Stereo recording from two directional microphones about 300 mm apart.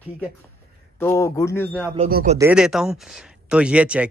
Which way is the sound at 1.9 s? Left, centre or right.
Right.